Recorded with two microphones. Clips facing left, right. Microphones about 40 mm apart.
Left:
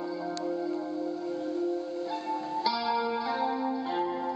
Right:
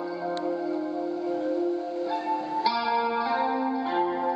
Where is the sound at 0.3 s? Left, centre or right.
Right.